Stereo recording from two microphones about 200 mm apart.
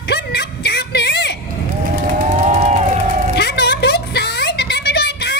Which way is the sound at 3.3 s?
55° left (ahead or behind).